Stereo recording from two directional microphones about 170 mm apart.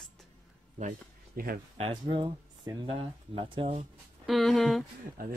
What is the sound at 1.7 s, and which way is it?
Speech, 30° right (ahead or behind).